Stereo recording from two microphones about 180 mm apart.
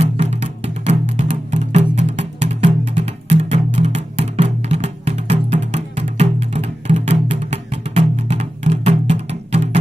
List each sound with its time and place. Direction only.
0.0 s music: 35° right (ahead or behind)